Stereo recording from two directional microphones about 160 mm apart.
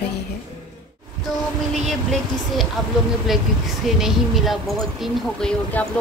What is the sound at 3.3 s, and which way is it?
Speech, centre (ahead or behind).